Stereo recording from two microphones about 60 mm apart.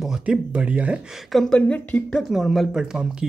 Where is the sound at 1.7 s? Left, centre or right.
Left.